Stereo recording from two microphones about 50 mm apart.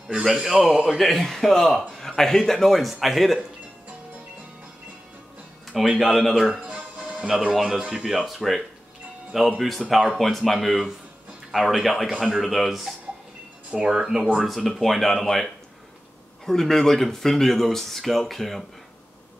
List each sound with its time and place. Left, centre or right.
0.3 s speech: centre
5.9 s speech: centre
6.6 s music: centre
7.2 s speech: centre
13.7 s speech: centre